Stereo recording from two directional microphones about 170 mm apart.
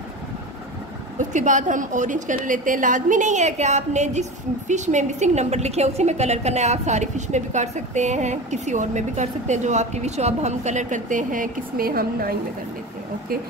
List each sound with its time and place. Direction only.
1.1 s a woman's voice: 45° right (ahead or behind)